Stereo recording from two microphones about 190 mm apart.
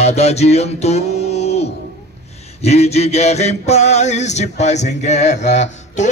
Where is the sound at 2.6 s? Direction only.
35° left (ahead or behind).